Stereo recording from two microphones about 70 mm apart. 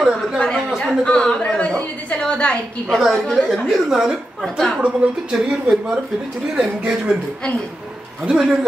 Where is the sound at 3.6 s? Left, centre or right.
Centre.